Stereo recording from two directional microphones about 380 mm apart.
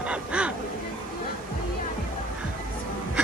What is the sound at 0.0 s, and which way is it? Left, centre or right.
Hubbub, centre.